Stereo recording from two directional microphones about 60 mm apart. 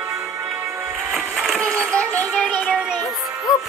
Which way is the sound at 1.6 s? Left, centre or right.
Centre.